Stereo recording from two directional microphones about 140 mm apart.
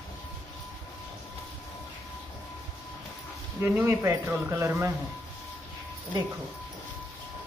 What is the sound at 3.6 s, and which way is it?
Speech, 15° right (ahead or behind).